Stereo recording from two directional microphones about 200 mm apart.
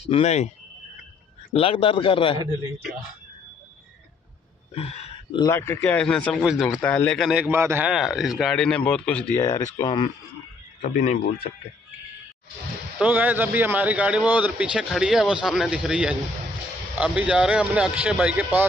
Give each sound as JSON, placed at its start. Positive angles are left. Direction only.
{"t": 0.0, "sound": "speech", "side_deg": 35}
{"t": 1.5, "sound": "speech", "side_deg": 25}
{"t": 4.7, "sound": "a sound", "side_deg": 30}
{"t": 5.4, "sound": "a man's voice", "side_deg": 15}
{"t": 13.0, "sound": "a man's voice", "side_deg": -10}